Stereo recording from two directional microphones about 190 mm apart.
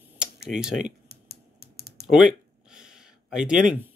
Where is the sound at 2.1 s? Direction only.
5° right (ahead or behind).